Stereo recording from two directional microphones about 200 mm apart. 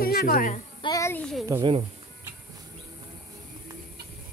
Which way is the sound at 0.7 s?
20° left (ahead or behind).